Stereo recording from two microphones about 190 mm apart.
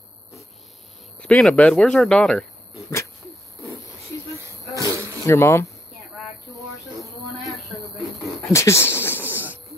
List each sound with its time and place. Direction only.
1.2 s speech: 5° left (ahead or behind)
4.7 s insect: 15° right (ahead or behind)
5.2 s speech: 15° left (ahead or behind)
8.5 s a sound: 15° left (ahead or behind)